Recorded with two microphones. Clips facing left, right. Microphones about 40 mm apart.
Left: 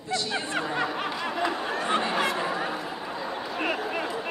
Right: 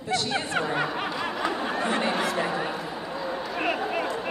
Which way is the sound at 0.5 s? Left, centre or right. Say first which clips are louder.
Right 1 dB; centre.